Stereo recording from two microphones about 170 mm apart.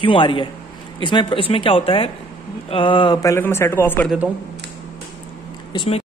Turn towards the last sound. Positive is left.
turn(degrees=30)  # may be behind; listen again after turning